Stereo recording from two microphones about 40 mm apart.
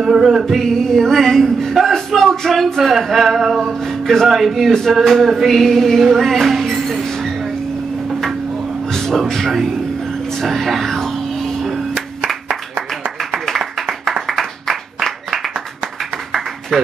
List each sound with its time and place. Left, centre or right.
0.0 s music: centre
0.6 s speech: centre
3.8 s speech: centre
4.3 s speech: centre
6.0 s speech: centre
6.3 s speech: centre
8.9 s music: centre
10.4 s a sound: centre
13.7 s clapping: centre
14.2 s applause: centre
16.3 s a sound: centre